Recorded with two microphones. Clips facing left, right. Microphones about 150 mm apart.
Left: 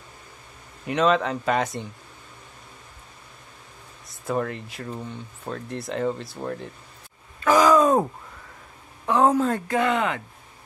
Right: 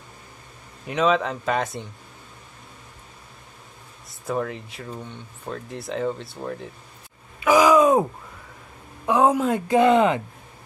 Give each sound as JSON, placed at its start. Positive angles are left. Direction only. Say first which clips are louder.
{"t": 0.8, "sound": "speech", "louder": "even", "side_deg": 0}
{"t": 4.1, "sound": "speech", "louder": "even", "side_deg": 0}
{"t": 7.3, "sound": "groan", "louder": "right 1 dB", "side_deg": -10}
{"t": 9.0, "sound": "a woman's voice", "louder": "right 1 dB", "side_deg": -10}
{"t": 9.8, "sound": "speech", "louder": "right 8 dB", "side_deg": -25}